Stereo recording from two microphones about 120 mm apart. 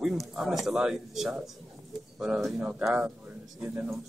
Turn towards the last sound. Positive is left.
turn(degrees=-20)  # may be behind; listen again after turning